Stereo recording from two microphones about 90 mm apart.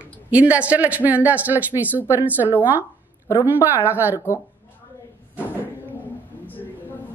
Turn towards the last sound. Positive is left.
turn(degrees=20)  # may be behind; listen again after turning